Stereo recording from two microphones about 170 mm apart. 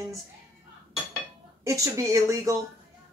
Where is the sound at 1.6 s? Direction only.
20° right (ahead or behind).